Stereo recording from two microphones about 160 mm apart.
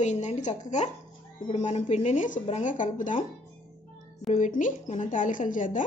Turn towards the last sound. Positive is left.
turn(degrees=55)  # may be behind; listen again after turning